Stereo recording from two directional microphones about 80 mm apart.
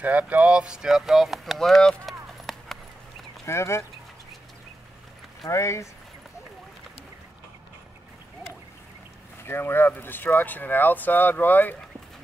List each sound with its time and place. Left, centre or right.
0.0 s speech: centre
3.4 s speech: left
5.5 s speech: left
9.4 s speech: left